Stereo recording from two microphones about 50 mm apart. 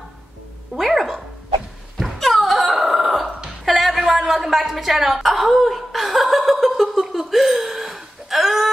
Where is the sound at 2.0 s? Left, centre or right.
Centre.